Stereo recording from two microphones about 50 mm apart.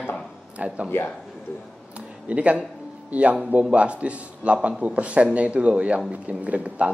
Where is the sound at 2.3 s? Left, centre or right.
Right.